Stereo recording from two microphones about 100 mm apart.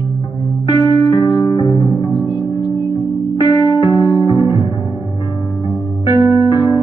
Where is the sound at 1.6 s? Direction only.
45° left (ahead or behind).